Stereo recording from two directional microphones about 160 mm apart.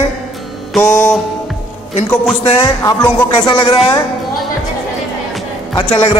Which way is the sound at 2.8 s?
20° left (ahead or behind).